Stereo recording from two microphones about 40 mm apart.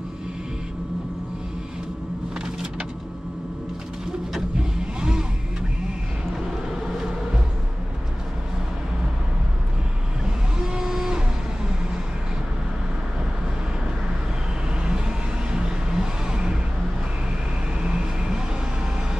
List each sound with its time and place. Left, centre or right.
2.4 s vehicle: right
4.6 s vehicle: centre
10.2 s vehicle: centre
14.8 s vehicle: right
17.8 s vehicle: centre